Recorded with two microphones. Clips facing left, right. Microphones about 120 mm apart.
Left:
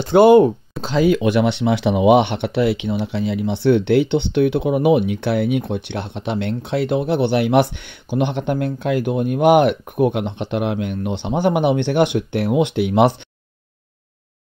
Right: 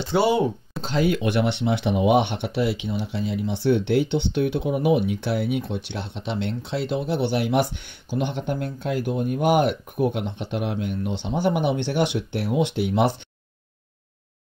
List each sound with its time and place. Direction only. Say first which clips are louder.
0.0 s speech: left 10 dB; 55° left (ahead or behind)
0.7 s speech: left 6 dB; 90° left; by 13.3 s 70° left (ahead or behind)